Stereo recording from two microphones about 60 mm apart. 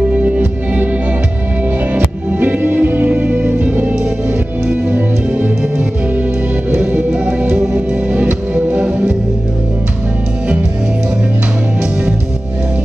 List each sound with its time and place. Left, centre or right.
0.2 s music: right
2.4 s music: right
7.1 s music: centre